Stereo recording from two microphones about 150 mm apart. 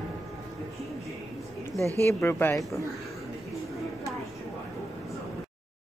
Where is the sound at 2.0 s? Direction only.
15° left (ahead or behind).